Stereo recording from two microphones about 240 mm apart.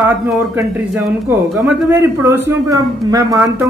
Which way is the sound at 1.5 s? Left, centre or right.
Centre.